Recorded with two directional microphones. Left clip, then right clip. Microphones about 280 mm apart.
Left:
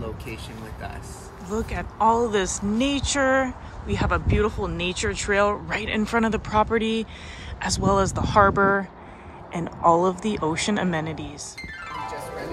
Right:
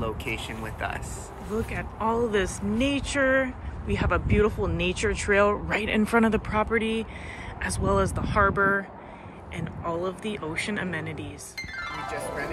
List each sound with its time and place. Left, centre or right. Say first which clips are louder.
1.5 s speech: left 2 dB; centre